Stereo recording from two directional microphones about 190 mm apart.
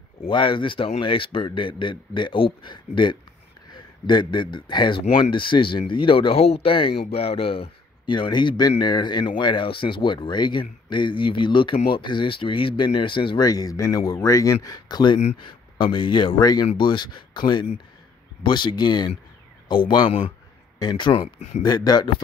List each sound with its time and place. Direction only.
0.2 s speech: 25° left (ahead or behind)
21.6 s speech: 20° left (ahead or behind)